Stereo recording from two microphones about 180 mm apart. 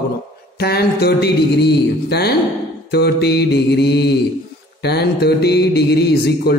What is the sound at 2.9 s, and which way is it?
Mantra, 65° left (ahead or behind).